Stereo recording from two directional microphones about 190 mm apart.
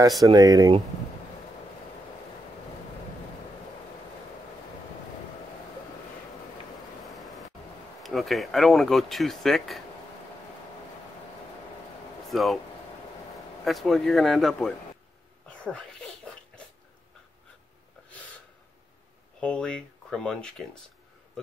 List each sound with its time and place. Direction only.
0.3 s speech: 20° right (ahead or behind)
7.2 s vehicle: centre (ahead or behind)
8.0 s speech: centre (ahead or behind)
12.3 s speech: centre (ahead or behind)
13.7 s speech: centre (ahead or behind)
19.4 s speech: 5° left (ahead or behind)